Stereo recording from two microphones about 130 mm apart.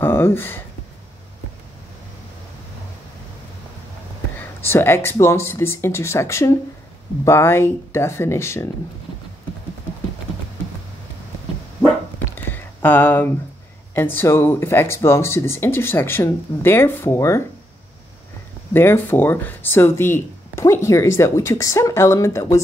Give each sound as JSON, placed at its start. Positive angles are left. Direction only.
{"t": 0.0, "sound": "speech", "side_deg": 20}
{"t": 4.4, "sound": "speech", "side_deg": 20}
{"t": 12.4, "sound": "a sound", "side_deg": 15}
{"t": 13.9, "sound": "speech", "side_deg": 15}
{"t": 18.7, "sound": "speech", "side_deg": 15}